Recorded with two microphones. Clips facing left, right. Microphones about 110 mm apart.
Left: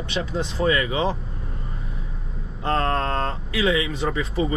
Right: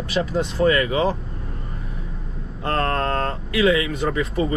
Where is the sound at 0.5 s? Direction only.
40° right (ahead or behind).